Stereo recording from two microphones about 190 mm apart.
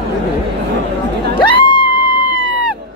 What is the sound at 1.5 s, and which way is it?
Music, 25° left (ahead or behind).